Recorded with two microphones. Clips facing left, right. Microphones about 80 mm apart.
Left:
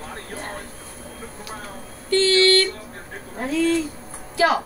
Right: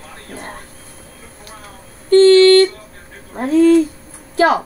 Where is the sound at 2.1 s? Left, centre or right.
Right.